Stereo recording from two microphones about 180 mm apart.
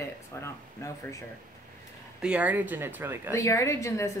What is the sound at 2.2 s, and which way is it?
Speech, 5° right (ahead or behind).